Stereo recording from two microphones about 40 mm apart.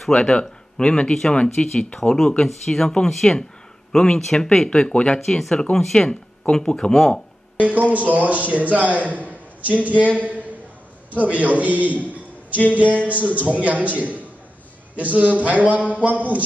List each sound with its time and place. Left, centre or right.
0.1 s speech: left
2.1 s speech: centre
4.6 s speech: left
5.2 s speech: centre
7.5 s a man's voice: right